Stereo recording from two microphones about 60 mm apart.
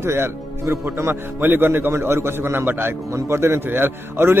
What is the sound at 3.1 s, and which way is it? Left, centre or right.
A man's voice, right.